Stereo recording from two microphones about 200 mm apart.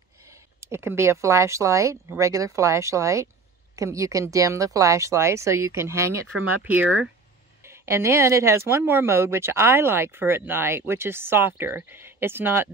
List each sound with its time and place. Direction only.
0.6 s speech: 10° right (ahead or behind)